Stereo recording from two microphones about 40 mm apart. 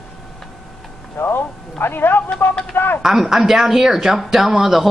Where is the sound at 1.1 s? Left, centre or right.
Left.